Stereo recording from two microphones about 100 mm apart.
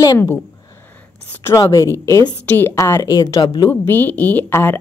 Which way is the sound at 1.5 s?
35° left (ahead or behind).